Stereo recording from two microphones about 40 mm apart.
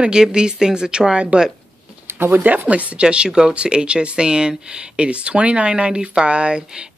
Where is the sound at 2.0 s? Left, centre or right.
Right.